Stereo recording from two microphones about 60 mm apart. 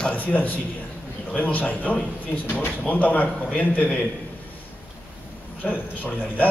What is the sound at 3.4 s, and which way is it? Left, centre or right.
Speech, centre.